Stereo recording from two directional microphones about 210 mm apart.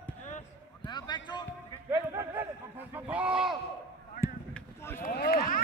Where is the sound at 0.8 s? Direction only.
20° left (ahead or behind).